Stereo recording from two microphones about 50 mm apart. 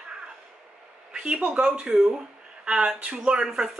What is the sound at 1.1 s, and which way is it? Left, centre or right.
A woman's voice, right.